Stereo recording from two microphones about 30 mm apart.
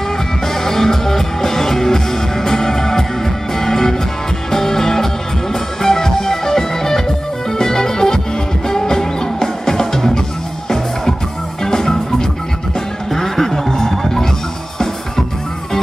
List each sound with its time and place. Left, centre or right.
0.6 s music: centre
11.6 s music: centre